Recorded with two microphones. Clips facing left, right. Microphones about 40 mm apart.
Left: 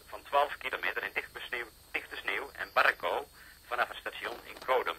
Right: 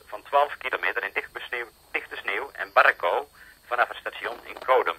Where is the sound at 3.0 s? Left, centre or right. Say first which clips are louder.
Right 8 dB; right.